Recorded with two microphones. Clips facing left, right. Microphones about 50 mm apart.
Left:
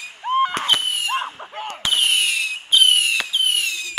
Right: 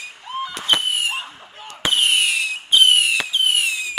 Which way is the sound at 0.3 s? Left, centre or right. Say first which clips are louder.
Left 9 dB; left.